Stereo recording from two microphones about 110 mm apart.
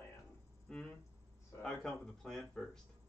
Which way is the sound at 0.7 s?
5° left (ahead or behind).